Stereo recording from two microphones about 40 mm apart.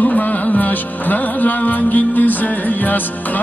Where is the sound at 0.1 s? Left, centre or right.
Left.